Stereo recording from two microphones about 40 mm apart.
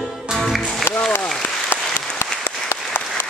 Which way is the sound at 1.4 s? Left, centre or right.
Left.